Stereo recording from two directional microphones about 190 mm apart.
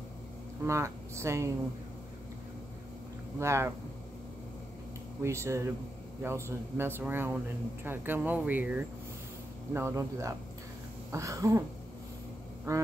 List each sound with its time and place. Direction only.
0.7 s speech: 15° right (ahead or behind)
3.3 s speech: 15° right (ahead or behind)
5.2 s speech: 15° right (ahead or behind)
12.7 s speech: 15° right (ahead or behind)